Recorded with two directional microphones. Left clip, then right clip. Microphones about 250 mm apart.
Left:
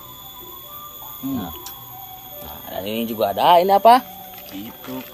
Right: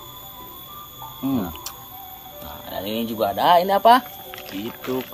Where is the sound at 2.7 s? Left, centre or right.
Left.